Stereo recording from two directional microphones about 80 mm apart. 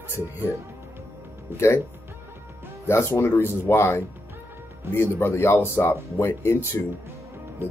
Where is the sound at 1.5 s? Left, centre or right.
Right.